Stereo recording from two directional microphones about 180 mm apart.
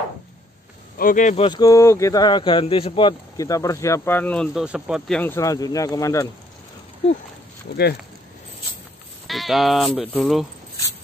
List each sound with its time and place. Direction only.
0.9 s speech: 50° left (ahead or behind)
1.3 s speech: 30° left (ahead or behind)
1.6 s speech: 15° left (ahead or behind)
4.6 s speech: 5° right (ahead or behind); by 6.2 s 20° left (ahead or behind)
7.7 s speech: 60° left (ahead or behind)
9.3 s speech: centre (ahead or behind)